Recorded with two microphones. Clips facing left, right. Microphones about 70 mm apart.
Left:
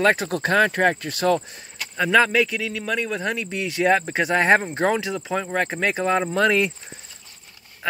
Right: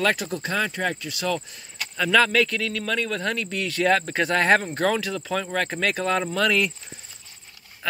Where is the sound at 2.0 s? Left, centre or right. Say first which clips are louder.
Left 2 dB; left.